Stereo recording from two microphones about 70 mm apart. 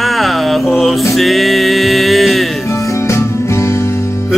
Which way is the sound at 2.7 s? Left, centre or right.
Left.